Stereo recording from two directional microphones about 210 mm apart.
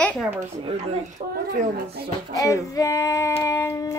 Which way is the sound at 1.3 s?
45° right (ahead or behind).